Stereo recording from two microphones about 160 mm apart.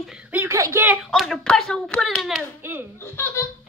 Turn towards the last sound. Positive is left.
turn(degrees=15)  # may be behind; listen again after turning